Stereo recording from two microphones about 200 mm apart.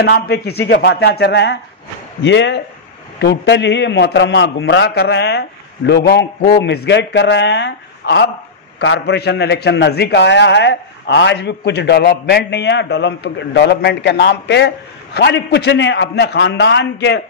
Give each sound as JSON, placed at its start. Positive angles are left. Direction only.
{"t": 0.0, "sound": "a man's voice", "side_deg": 55}